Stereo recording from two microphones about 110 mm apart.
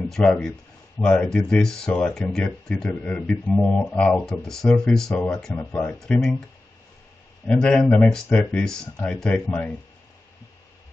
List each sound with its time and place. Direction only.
0.1 s speech: 5° left (ahead or behind)
5.6 s speech: 20° left (ahead or behind)
5.9 s speech: 5° left (ahead or behind)
7.4 s speech: 5° left (ahead or behind)